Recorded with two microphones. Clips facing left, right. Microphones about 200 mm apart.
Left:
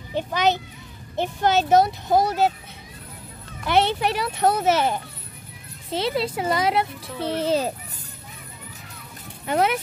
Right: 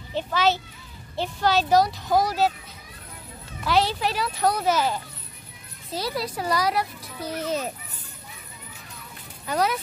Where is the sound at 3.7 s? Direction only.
60° left (ahead or behind).